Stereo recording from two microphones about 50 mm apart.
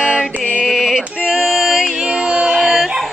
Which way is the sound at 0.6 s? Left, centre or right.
Centre.